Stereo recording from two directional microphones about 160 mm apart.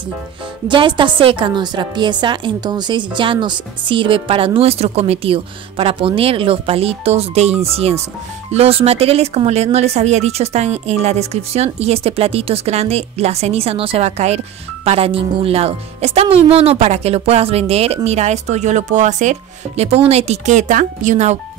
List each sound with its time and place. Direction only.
0.7 s a woman's voice: 30° right (ahead or behind); by 21.4 s 50° right (ahead or behind)